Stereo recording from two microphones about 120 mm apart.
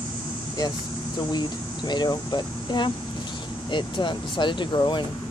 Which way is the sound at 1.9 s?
35° left (ahead or behind).